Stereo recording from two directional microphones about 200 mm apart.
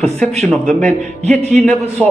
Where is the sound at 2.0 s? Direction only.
Centre (ahead or behind).